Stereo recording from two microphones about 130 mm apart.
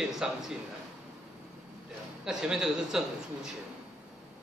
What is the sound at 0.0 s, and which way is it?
Speech, 5° right (ahead or behind).